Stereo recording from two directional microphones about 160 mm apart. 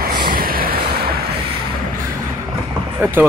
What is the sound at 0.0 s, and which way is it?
Vehicle, 70° right (ahead or behind).